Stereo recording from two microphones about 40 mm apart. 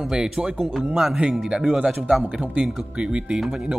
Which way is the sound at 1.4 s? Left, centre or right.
Centre.